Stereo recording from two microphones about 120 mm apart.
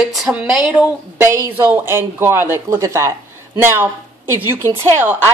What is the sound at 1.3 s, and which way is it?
A woman's voice, 20° right (ahead or behind).